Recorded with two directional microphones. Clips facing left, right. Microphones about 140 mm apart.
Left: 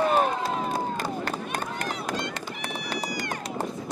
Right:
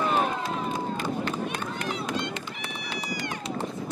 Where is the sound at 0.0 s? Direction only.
35° left (ahead or behind).